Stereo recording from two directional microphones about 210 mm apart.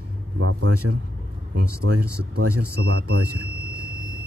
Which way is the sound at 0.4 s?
85° right.